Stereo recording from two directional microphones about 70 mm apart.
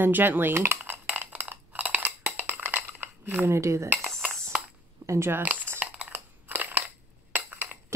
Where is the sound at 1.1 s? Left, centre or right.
Right.